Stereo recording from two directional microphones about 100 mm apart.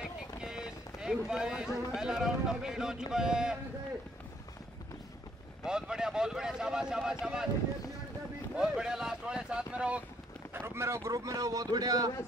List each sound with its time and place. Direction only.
1.0 s speech: 5° right (ahead or behind)
5.6 s speech: 5° right (ahead or behind)
8.5 s speech: 5° right (ahead or behind)
10.5 s speech: 25° right (ahead or behind); by 12.1 s 40° right (ahead or behind)